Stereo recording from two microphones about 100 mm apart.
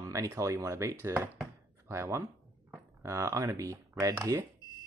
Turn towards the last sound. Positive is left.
turn(degrees=-30)  # may be behind; listen again after turning